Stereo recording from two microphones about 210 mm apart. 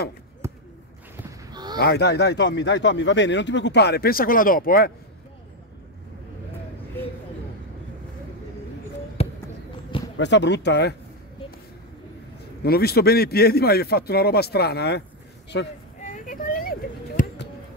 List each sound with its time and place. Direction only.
0.4 s a sound: 10° right (ahead or behind)
1.8 s speech: 50° left (ahead or behind)
9.2 s basketball bounce: 30° left (ahead or behind)
10.1 s speech: 55° left (ahead or behind)
12.6 s speech: 50° left (ahead or behind)
16.0 s a sound: 40° left (ahead or behind)
17.2 s basketball bounce: 40° left (ahead or behind)